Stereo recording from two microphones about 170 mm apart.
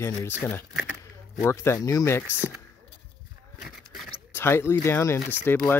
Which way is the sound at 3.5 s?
Centre (ahead or behind).